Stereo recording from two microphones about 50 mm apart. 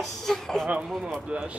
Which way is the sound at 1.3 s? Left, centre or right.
Right.